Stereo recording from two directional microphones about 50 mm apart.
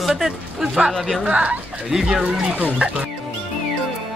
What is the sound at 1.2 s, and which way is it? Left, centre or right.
Speech, right.